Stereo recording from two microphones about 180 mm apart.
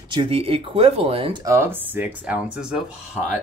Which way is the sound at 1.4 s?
15° right (ahead or behind).